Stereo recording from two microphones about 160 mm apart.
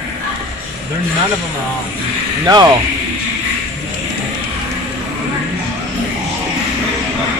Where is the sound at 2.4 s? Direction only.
25° right (ahead or behind).